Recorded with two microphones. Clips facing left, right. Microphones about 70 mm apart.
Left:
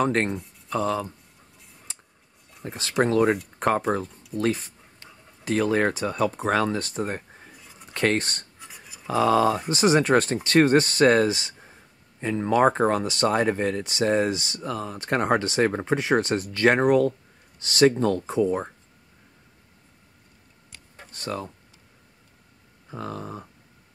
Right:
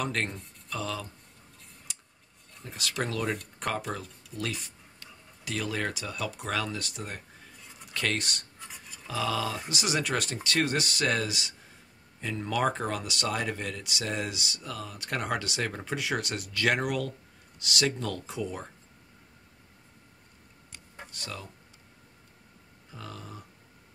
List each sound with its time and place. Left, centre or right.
0.0 s speech: left
2.6 s speech: left
8.5 s filing: centre
9.0 s speech: left
21.1 s speech: left
22.8 s speech: left